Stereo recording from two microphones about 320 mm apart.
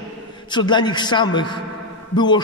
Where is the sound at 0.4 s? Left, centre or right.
Centre.